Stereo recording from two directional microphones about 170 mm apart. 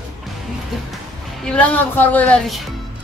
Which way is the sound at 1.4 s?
5° left (ahead or behind).